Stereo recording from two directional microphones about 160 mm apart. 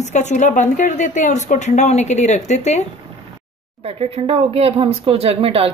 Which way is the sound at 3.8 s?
40° right (ahead or behind).